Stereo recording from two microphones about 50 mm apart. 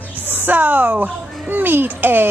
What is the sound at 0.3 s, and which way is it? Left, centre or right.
A woman's voice, right.